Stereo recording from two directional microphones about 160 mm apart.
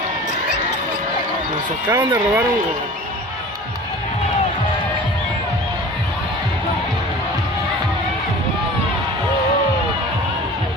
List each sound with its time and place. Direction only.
1.9 s speech: 15° right (ahead or behind)